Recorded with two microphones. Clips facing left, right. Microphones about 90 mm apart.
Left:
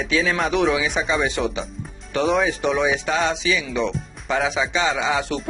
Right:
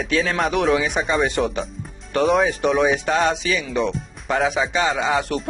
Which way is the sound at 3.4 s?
50° right (ahead or behind).